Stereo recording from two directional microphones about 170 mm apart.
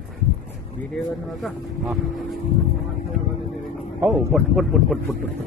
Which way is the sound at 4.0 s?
Centre (ahead or behind).